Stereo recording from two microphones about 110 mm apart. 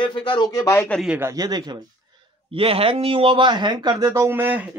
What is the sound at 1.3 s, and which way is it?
Speech, 40° right (ahead or behind).